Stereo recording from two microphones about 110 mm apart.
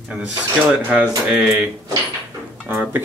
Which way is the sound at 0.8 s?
15° right (ahead or behind).